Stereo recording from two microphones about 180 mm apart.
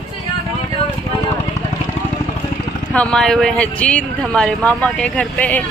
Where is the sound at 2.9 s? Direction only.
5° left (ahead or behind).